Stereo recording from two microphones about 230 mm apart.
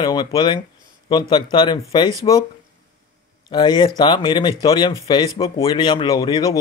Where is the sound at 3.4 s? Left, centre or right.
Centre.